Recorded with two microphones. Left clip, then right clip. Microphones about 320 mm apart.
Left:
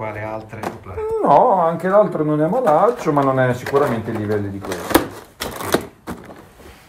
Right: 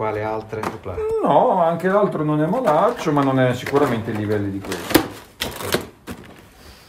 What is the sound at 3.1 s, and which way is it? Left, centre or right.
Speech, centre.